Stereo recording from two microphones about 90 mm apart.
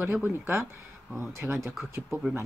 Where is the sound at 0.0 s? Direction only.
20° right (ahead or behind).